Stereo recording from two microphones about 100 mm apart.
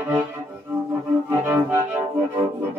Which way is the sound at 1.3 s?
25° right (ahead or behind).